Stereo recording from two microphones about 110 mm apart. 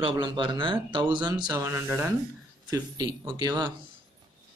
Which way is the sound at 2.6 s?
35° right (ahead or behind).